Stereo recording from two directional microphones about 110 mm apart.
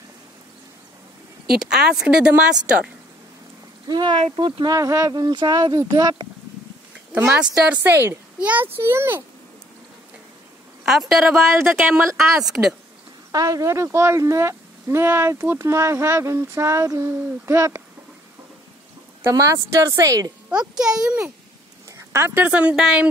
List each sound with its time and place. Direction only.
1.5 s speech: 5° right (ahead or behind)
3.9 s speech: 45° right (ahead or behind)
4.7 s speech: 30° right (ahead or behind)
7.1 s a sound: 20° right (ahead or behind)
7.3 s speech: 15° right (ahead or behind)
8.4 s speech: 15° right (ahead or behind)
10.9 s speech: centre (ahead or behind)
11.3 s speech: 20° right (ahead or behind)
13.3 s speech: 30° right (ahead or behind)
19.3 s speech: 30° right (ahead or behind)
20.4 s speech: 10° right (ahead or behind)
22.1 s speech: 20° right (ahead or behind)